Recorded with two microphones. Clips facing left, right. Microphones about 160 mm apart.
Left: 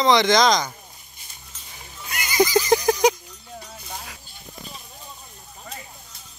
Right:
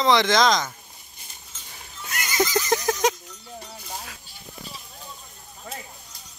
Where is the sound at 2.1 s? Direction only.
Centre (ahead or behind).